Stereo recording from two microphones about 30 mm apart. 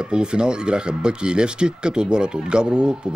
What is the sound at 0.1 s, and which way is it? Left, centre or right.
Speech, right.